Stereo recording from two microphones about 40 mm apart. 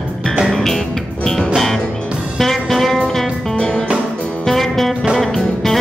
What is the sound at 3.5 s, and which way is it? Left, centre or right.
Music, left.